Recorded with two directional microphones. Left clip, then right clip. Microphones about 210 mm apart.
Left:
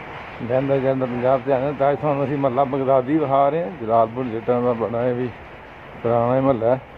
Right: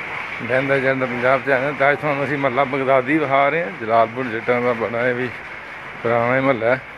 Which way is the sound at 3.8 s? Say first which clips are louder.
Right 1 dB; 20° right (ahead or behind).